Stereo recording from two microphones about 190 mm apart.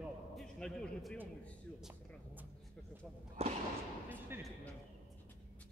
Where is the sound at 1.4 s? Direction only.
5° right (ahead or behind).